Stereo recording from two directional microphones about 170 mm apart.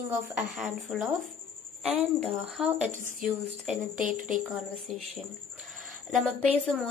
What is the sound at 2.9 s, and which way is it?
Speech, 50° right (ahead or behind).